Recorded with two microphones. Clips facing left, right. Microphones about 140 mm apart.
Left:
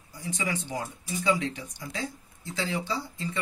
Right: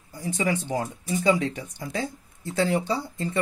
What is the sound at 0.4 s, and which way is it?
Speech, 50° right (ahead or behind).